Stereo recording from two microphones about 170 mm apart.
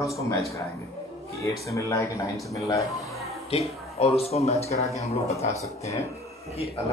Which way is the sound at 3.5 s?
35° left (ahead or behind).